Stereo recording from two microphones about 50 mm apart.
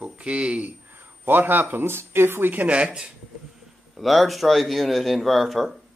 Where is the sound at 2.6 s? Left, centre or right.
Right.